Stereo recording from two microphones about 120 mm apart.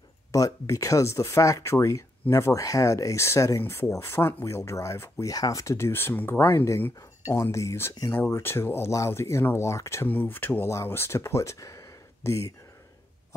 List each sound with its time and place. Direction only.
0.3 s speech: 30° left (ahead or behind)